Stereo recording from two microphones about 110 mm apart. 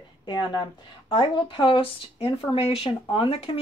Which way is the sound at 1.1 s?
55° left (ahead or behind).